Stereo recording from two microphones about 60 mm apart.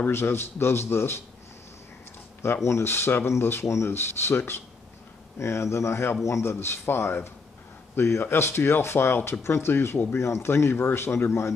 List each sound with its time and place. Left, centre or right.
0.0 s a man's voice: left
2.4 s speech: left